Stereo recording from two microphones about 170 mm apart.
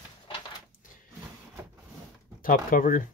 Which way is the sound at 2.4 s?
55° left (ahead or behind).